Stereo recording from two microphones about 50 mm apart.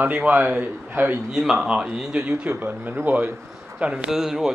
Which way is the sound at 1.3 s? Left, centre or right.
Centre.